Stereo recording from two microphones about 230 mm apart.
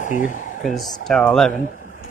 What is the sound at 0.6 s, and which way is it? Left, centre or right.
Speech, centre.